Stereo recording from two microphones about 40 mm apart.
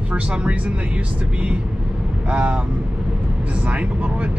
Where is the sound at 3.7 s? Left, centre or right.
Right.